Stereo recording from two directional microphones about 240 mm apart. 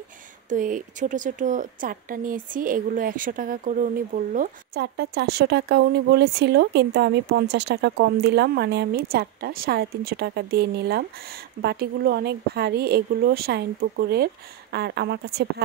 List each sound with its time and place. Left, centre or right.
0.5 s a woman's voice: right